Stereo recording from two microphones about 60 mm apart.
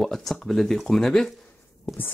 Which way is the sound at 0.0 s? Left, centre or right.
Centre.